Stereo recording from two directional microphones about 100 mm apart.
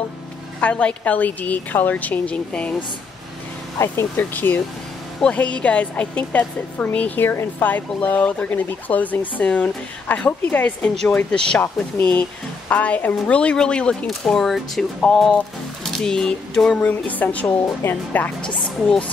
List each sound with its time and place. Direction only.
0.6 s speech: 15° left (ahead or behind)
3.7 s speech: 30° left (ahead or behind); by 16.8 s 5° left (ahead or behind)
16.8 s speech: 15° left (ahead or behind)